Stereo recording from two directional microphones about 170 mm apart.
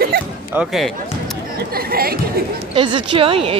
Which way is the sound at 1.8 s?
60° right (ahead or behind).